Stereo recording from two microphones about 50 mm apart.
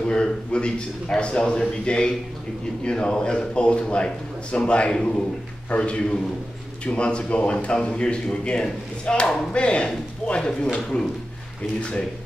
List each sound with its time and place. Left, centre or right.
0.0 s speech: centre